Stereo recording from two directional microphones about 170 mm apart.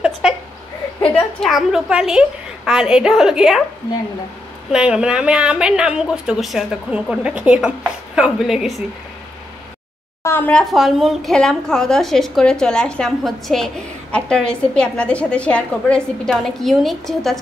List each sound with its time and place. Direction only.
1.1 s a woman's voice: centre (ahead or behind)
4.7 s a woman's voice: 5° right (ahead or behind)
10.2 s a woman's voice: 10° left (ahead or behind)